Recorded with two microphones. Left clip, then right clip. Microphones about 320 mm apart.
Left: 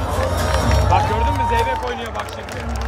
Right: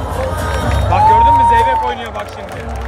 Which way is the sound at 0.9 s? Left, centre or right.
Right.